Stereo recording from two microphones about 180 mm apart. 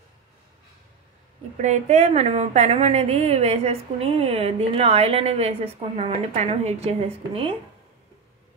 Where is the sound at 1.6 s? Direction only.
40° right (ahead or behind).